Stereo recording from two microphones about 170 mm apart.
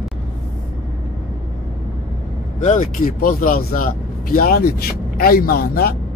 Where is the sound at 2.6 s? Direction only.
50° left (ahead or behind).